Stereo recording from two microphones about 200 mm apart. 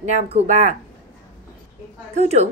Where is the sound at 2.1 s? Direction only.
35° right (ahead or behind).